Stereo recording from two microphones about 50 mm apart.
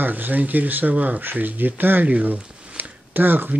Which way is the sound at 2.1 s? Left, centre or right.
Right.